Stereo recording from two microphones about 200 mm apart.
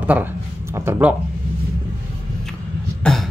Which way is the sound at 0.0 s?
10° right (ahead or behind).